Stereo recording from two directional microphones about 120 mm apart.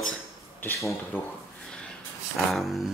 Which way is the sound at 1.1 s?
15° left (ahead or behind).